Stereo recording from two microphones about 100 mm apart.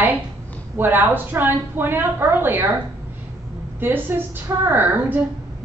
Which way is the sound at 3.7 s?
20° right (ahead or behind).